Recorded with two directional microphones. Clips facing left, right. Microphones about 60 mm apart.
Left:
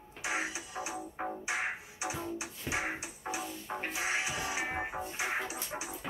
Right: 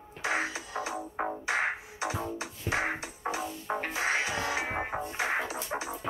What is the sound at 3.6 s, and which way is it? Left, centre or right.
Music, right.